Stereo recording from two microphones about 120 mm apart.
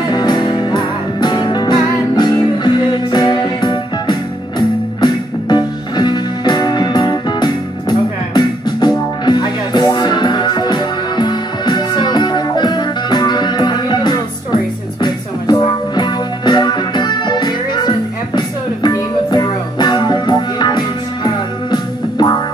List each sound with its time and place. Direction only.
0.1 s music: 35° left (ahead or behind)